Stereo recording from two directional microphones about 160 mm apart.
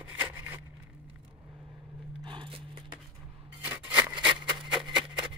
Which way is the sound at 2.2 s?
30° right (ahead or behind).